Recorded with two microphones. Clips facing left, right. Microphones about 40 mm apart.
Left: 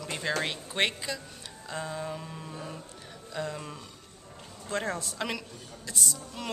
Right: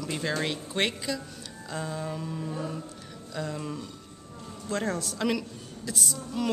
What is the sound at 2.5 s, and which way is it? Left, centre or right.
Music, centre.